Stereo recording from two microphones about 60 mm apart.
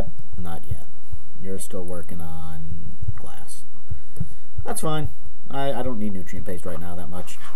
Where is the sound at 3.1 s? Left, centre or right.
Centre.